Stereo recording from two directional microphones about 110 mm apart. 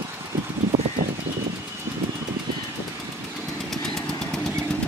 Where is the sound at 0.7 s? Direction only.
65° right (ahead or behind).